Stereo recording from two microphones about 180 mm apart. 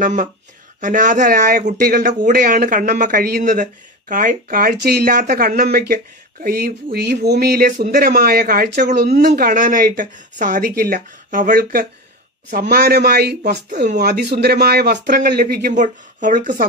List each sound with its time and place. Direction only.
0.0 s speech: 45° right (ahead or behind)